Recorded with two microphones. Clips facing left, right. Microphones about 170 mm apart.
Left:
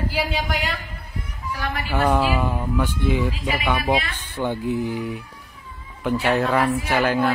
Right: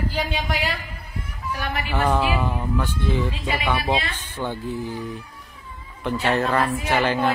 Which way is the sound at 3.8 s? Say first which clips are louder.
Left 2 dB; 25° right (ahead or behind).